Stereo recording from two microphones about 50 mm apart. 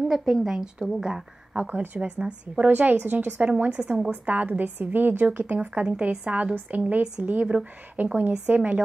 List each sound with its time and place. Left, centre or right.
0.1 s a woman's voice: centre
1.0 s speech: centre
1.7 s a woman's voice: right
2.0 s a woman's voice: right
2.5 s a woman's voice: right
3.4 s a woman's voice: right
8.0 s a woman's voice: right
8.5 s a woman's voice: right